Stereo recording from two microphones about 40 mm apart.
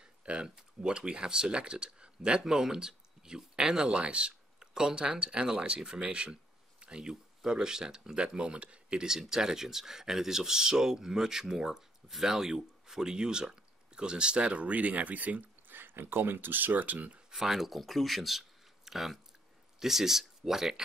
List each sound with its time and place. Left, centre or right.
0.0 s speech: right
6.0 s speech: right
9.0 s speech: centre; by 15.8 s right
15.8 s speech: right
17.3 s speech: centre